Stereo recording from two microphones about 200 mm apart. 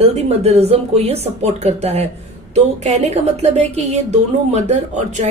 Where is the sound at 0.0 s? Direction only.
30° right (ahead or behind).